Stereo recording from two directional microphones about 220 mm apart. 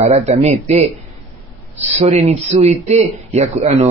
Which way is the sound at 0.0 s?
30° right (ahead or behind).